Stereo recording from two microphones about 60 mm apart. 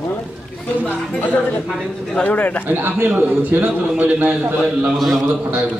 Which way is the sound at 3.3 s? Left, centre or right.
Right.